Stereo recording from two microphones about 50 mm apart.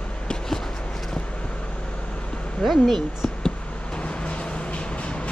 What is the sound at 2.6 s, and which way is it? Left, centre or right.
Speech, centre.